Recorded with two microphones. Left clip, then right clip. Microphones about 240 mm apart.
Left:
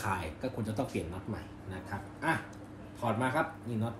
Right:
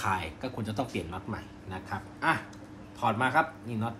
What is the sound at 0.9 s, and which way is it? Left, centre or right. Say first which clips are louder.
Speech: right 2 dB; centre.